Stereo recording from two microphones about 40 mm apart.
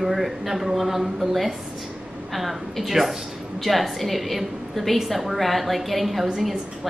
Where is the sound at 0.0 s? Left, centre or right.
Centre.